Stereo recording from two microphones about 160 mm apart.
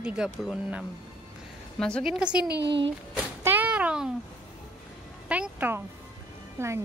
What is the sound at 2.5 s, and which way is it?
Speech, 90° right.